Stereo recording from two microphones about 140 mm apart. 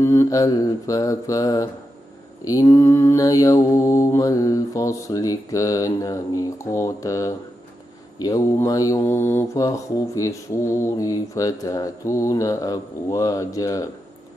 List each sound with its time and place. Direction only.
0.0 s mantra: 20° left (ahead or behind)